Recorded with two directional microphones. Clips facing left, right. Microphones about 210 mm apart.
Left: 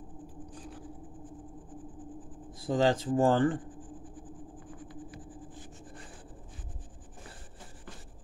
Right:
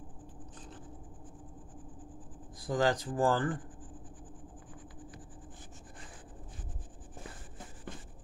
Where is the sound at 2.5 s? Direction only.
25° left (ahead or behind).